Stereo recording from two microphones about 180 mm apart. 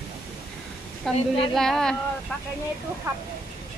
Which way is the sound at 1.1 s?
30° left (ahead or behind).